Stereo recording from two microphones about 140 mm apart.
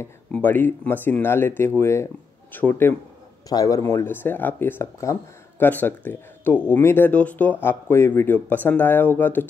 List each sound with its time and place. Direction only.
0.0 s speech: 10° left (ahead or behind)
3.4 s speech: 25° left (ahead or behind)